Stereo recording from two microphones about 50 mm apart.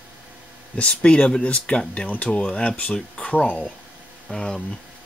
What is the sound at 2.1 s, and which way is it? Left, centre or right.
Speech, left.